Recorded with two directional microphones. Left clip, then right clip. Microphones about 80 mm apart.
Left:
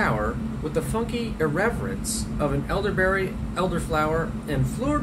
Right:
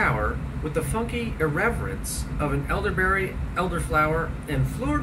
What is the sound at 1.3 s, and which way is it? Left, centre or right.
Speech, left.